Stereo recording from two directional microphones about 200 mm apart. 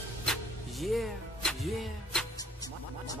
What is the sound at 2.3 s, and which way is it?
Music, 20° left (ahead or behind).